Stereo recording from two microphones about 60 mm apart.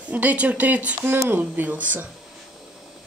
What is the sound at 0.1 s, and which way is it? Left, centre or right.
Speech, right.